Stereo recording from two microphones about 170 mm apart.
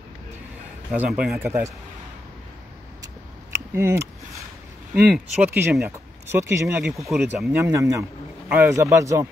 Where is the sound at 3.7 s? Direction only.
15° right (ahead or behind).